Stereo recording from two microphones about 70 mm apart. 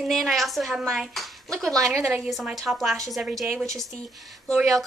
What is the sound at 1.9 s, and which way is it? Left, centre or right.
Speech, right.